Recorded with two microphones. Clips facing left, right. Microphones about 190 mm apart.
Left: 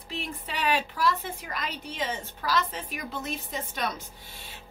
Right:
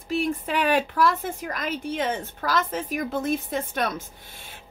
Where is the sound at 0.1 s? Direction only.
45° right (ahead or behind).